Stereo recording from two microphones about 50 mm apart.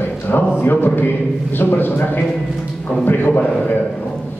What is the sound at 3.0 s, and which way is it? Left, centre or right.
Speech, left.